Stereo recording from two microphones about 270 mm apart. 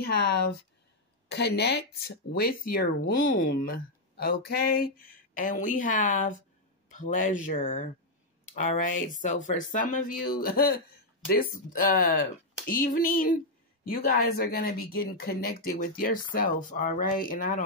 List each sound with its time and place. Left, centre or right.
0.0 s speech: left
1.3 s speech: left